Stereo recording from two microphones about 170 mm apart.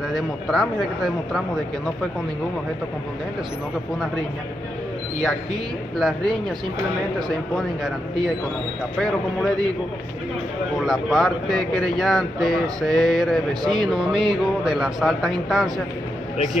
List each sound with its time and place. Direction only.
0.1 s speech: centre (ahead or behind)
5.9 s speech: centre (ahead or behind)
9.0 s speech: 5° left (ahead or behind)
10.9 s speech: centre (ahead or behind)
13.5 s speech: 25° right (ahead or behind)
13.8 s speech: centre (ahead or behind)